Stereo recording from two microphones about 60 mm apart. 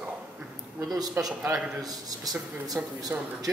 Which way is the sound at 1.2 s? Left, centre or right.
Right.